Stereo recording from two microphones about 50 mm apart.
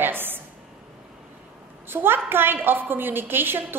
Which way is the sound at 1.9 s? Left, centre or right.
Right.